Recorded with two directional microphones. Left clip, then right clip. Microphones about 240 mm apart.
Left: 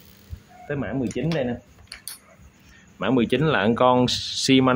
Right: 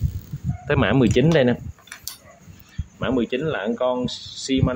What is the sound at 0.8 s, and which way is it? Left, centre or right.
Speech, right.